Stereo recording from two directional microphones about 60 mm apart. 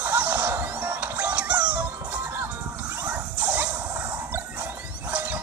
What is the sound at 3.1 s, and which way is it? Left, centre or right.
Dog, right.